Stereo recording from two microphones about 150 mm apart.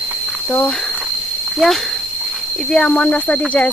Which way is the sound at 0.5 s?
10° left (ahead or behind).